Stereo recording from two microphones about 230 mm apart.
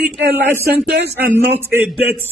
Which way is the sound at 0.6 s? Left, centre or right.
Right.